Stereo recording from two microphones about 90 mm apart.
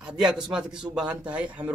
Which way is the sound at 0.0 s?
10° right (ahead or behind).